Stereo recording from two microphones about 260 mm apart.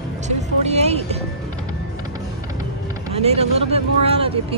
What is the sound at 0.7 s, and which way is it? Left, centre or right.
Music, right.